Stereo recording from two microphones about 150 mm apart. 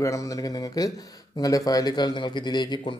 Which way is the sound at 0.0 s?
20° left (ahead or behind).